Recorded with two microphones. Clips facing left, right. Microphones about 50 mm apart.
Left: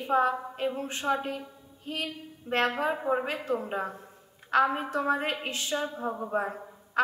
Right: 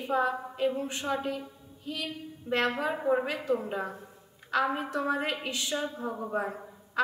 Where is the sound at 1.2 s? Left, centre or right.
Left.